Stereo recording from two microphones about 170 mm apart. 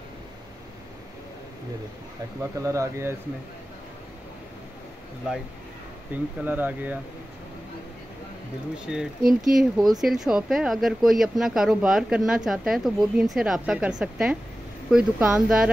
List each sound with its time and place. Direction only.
2.5 s speech: 20° right (ahead or behind)
6.1 s speech: 10° right (ahead or behind)
8.8 s speech: 5° right (ahead or behind)